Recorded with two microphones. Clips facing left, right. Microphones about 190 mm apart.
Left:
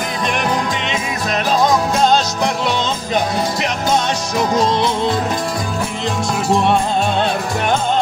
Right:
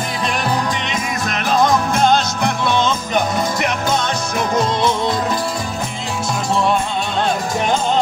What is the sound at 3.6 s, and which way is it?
Music, 55° right (ahead or behind).